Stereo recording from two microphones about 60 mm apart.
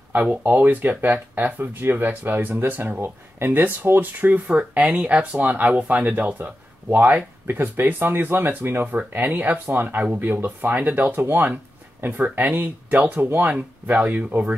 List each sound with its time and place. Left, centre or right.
0.1 s speech: right
11.2 s speech: right
12.0 s speech: right